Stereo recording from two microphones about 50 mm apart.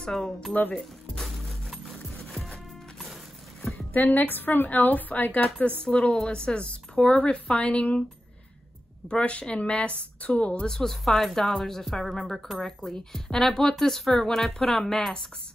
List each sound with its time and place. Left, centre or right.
0.0 s speech: centre
1.1 s music: centre
3.9 s a woman's voice: left
5.9 s speech: left
9.1 s speech: left